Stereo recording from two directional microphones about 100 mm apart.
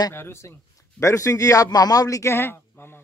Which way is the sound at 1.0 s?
30° left (ahead or behind).